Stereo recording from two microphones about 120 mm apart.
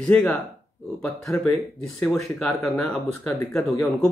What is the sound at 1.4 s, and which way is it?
Speech, 5° left (ahead or behind).